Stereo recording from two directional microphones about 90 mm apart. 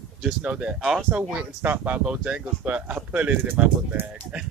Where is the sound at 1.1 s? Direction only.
20° right (ahead or behind).